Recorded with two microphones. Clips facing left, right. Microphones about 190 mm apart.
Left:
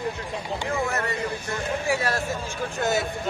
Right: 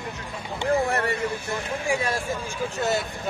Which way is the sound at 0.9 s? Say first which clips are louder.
Right 3 dB; 30° right (ahead or behind).